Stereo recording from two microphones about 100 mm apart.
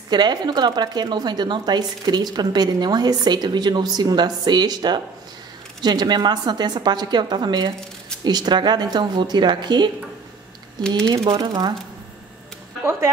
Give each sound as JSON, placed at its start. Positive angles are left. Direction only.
{"t": 0.1, "sound": "a woman's voice", "side_deg": -45}
{"t": 10.9, "sound": "a woman's voice", "side_deg": -45}